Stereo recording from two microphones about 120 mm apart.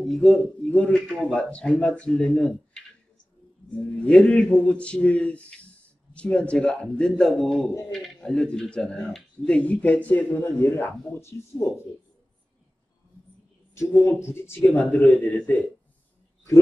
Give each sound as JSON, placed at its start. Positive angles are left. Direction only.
{"t": 0.0, "sound": "a man's voice", "side_deg": 5}
{"t": 13.7, "sound": "speech", "side_deg": 20}